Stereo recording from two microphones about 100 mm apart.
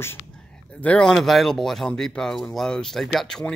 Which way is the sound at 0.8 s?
10° left (ahead or behind).